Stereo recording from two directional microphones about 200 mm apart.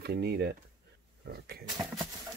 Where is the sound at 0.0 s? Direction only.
55° right (ahead or behind).